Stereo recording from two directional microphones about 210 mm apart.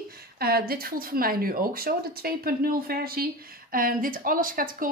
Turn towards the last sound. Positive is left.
turn(degrees=-40)  # may be behind; listen again after turning